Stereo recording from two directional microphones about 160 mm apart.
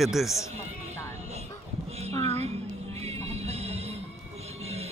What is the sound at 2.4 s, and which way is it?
Music, 40° right (ahead or behind).